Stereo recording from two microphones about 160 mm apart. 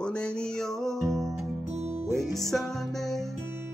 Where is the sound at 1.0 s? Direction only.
20° right (ahead or behind).